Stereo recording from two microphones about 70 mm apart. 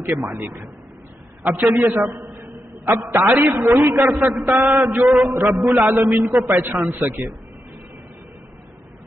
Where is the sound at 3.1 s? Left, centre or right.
Right.